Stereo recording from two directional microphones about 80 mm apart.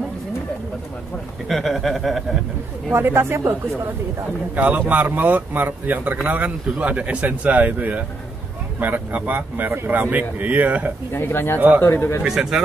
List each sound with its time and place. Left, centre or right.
1.5 s speech: centre
2.9 s speech: right
4.6 s speech: centre
11.1 s speech: left
12.2 s speech: centre